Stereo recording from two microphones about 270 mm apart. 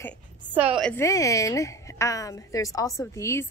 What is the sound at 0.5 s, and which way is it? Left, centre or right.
A woman's voice, centre.